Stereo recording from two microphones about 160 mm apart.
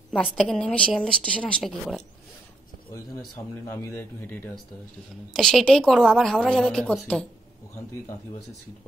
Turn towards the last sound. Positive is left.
turn(degrees=5)  # may be behind; listen again after turning